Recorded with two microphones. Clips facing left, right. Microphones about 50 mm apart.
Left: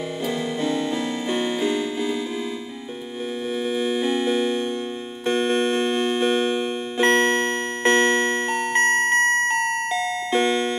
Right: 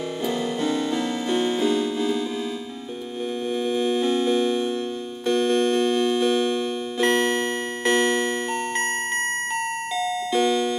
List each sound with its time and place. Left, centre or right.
0.3 s music: centre
3.5 s music: centre
8.8 s music: centre
10.3 s doorbell: left